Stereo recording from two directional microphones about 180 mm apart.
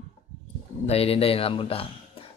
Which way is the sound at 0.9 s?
35° left (ahead or behind).